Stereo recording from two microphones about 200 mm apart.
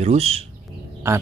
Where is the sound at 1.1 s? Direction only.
10° right (ahead or behind).